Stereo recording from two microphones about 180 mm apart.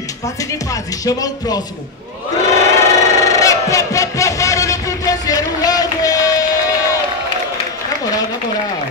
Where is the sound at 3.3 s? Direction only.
20° left (ahead or behind).